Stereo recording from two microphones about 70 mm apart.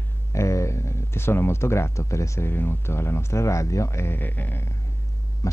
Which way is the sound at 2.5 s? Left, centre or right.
Left.